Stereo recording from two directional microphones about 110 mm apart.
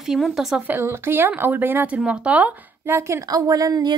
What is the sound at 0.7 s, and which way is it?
A woman's voice, 20° right (ahead or behind).